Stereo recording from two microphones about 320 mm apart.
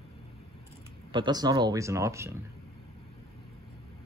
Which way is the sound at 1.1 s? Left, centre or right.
Centre.